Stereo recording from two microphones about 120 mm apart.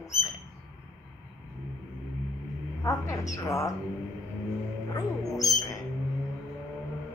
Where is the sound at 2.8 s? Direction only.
25° left (ahead or behind).